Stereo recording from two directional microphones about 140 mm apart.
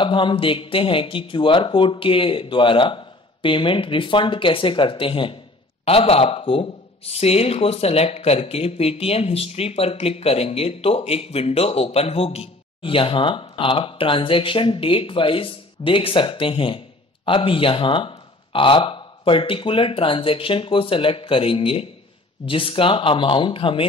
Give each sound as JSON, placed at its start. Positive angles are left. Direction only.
{"t": 0.0, "sound": "speech", "side_deg": 35}